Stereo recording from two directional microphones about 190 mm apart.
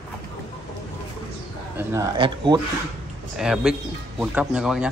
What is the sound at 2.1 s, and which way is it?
Speech, 25° right (ahead or behind).